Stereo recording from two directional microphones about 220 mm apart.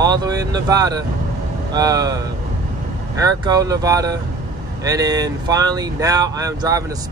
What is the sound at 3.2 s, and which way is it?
Speech, 15° right (ahead or behind).